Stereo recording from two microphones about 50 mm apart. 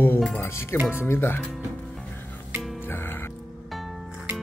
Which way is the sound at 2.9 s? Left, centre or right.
Left.